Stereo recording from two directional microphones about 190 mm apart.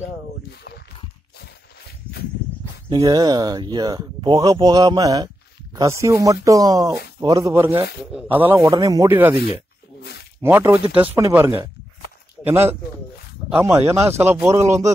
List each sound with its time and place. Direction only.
2.9 s speech: 20° right (ahead or behind)
8.6 s speech: 20° right (ahead or behind)
10.4 s speech: 10° right (ahead or behind)